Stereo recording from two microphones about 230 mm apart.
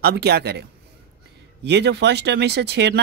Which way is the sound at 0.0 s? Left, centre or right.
Right.